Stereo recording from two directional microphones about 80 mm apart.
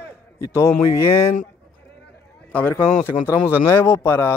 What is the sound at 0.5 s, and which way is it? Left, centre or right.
Speech, left.